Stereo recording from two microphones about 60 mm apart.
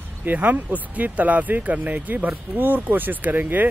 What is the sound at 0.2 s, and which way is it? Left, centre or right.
Speech, right.